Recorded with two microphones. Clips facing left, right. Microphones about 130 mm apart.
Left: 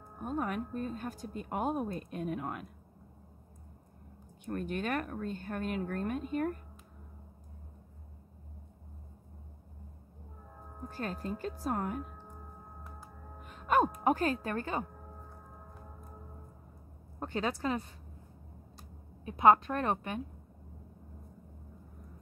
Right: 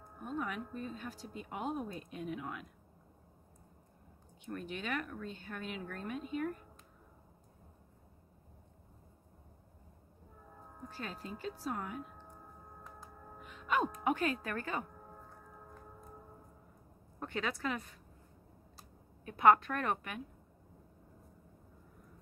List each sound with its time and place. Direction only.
0.2 s speech: 50° left (ahead or behind)
4.5 s speech: 50° left (ahead or behind)
10.9 s speech: 45° left (ahead or behind)
13.4 s music: 45° left (ahead or behind)
14.0 s speech: 35° left (ahead or behind)
17.2 s speech: 30° left (ahead or behind)
19.2 s a woman's voice: 20° left (ahead or behind)